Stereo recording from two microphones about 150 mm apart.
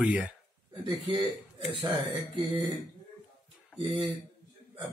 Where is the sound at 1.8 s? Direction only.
30° right (ahead or behind).